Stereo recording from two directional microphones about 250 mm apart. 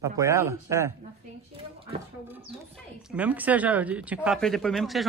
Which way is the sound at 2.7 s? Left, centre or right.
Centre.